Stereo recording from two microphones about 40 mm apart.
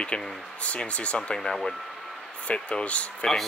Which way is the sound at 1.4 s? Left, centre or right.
Centre.